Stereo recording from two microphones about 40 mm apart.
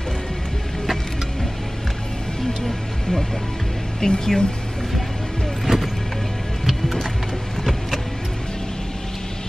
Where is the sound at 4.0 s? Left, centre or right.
Centre.